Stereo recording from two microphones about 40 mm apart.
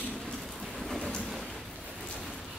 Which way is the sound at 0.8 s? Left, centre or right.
Centre.